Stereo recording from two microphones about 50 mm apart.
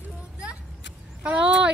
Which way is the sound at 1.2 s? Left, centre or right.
Right.